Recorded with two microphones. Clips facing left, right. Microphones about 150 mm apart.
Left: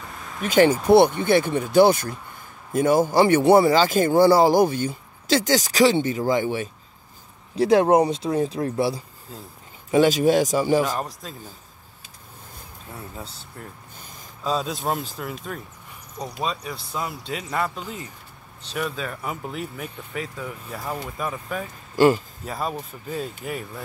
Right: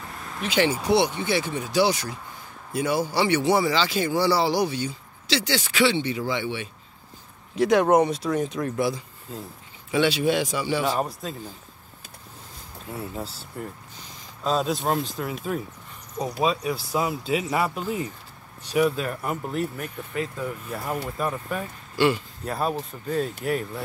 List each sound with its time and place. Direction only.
0.1 s vehicle: centre (ahead or behind)
0.4 s speech: 45° left (ahead or behind)
7.5 s speech: 30° left (ahead or behind)
9.8 s speech: 40° left (ahead or behind)
11.2 s speech: centre (ahead or behind)
13.1 s speech: 5° right (ahead or behind)
21.9 s speech: 45° left (ahead or behind)
22.4 s speech: centre (ahead or behind)